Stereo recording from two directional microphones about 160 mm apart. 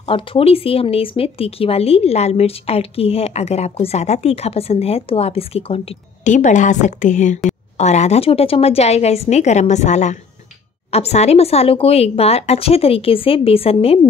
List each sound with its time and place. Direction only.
0.0 s speech: 35° left (ahead or behind)